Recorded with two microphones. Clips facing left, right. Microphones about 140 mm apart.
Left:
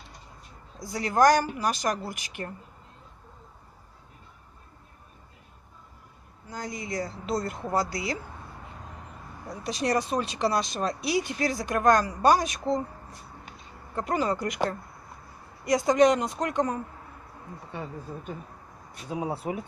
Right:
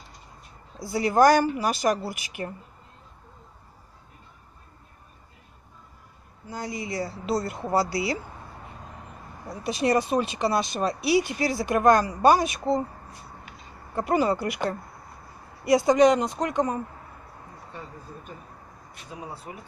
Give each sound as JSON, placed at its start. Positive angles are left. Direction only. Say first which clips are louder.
{"t": 0.7, "sound": "speech", "louder": "right 3 dB", "side_deg": -5}
{"t": 6.5, "sound": "speech", "louder": "right 2 dB", "side_deg": -5}
{"t": 9.5, "sound": "speech", "louder": "right 4 dB", "side_deg": -5}
{"t": 13.9, "sound": "speech", "louder": "right 4 dB", "side_deg": -5}
{"t": 15.6, "sound": "speech", "louder": "right 3 dB", "side_deg": -5}
{"t": 19.1, "sound": "speech", "louder": "left 8 dB", "side_deg": 70}